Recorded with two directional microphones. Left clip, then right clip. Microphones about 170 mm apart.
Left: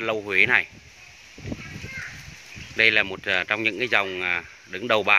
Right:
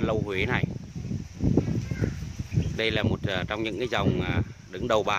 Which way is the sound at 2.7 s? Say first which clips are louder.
Left 8 dB; 10° right (ahead or behind).